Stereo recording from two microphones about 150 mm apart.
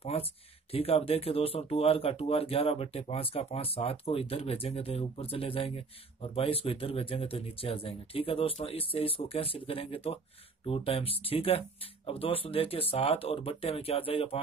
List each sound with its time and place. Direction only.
0.0 s speech: 40° left (ahead or behind)